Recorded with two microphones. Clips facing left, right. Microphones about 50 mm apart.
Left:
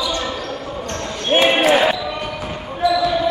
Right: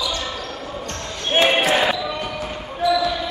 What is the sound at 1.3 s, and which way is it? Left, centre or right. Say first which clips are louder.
Basketball bounce: left 3 dB; left.